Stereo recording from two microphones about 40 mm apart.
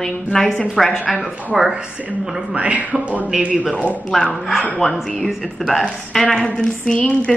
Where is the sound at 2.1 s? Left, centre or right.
Right.